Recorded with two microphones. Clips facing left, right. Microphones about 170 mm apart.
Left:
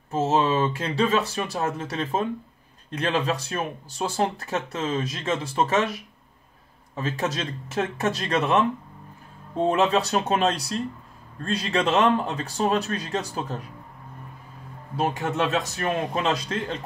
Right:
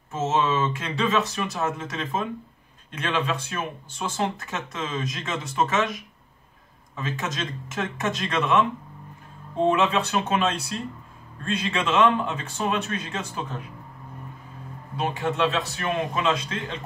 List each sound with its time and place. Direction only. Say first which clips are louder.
0.1 s speech: left 2 dB; 30° left (ahead or behind)
9.7 s speech: left 1 dB; 35° left (ahead or behind)
15.0 s speech: even; 45° left (ahead or behind)